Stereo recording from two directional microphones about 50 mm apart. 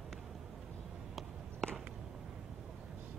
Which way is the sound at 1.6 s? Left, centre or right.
Centre.